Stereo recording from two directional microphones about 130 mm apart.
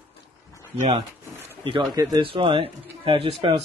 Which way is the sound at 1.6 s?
40° right (ahead or behind).